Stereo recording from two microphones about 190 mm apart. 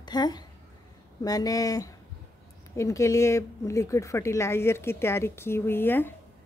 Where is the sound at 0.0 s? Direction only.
20° left (ahead or behind).